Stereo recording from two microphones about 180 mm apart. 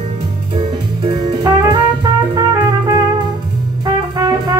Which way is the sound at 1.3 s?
20° right (ahead or behind).